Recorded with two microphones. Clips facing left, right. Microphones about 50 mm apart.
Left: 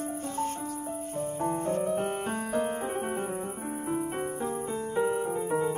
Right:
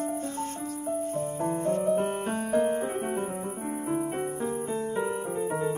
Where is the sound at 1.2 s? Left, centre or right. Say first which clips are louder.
Right 1 dB; centre.